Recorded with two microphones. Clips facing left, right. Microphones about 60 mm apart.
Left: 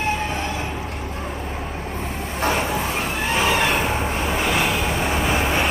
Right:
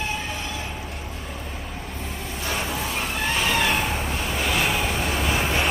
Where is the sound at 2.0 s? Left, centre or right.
Left.